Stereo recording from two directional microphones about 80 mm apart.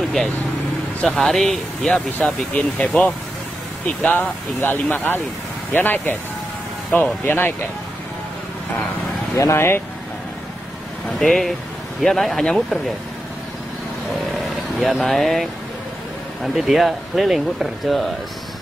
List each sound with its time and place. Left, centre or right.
1.0 s speech: centre
2.1 s speech: centre
9.4 s speech: left
11.1 s speech: centre
14.3 s vehicle: centre
16.4 s speech: centre